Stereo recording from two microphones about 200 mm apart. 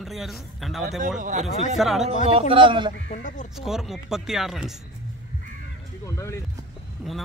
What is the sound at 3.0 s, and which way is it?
Speech, 40° left (ahead or behind).